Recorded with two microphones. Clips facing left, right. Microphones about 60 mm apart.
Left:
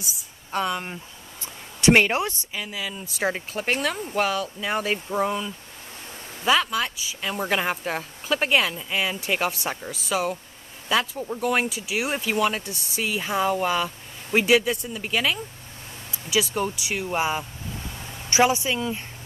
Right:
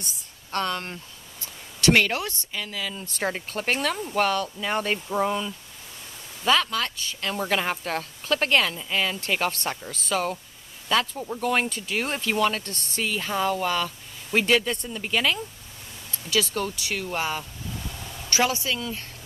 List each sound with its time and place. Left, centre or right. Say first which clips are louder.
0.0 s a woman's voice: left 2 dB; centre
1.4 s speech: left 3 dB; left